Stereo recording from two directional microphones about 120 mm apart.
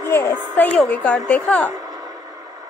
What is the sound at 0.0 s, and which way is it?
Speech, 20° left (ahead or behind).